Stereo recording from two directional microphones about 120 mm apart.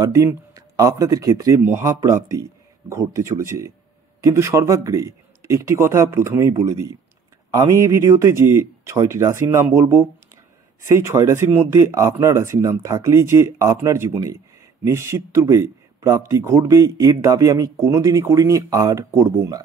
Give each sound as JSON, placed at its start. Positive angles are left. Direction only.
{"t": 0.0, "sound": "speech", "side_deg": -25}